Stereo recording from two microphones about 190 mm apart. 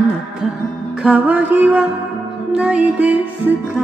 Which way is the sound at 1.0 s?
10° right (ahead or behind).